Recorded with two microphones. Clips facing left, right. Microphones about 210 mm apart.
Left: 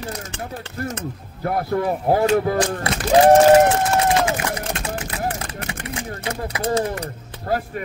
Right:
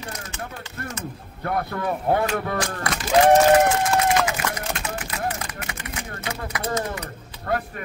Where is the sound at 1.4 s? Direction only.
30° left (ahead or behind).